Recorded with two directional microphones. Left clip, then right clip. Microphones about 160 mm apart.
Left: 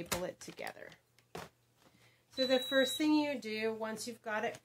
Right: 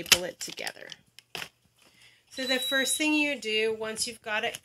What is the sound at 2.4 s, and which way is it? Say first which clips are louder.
Speech: right 4 dB; 45° right (ahead or behind).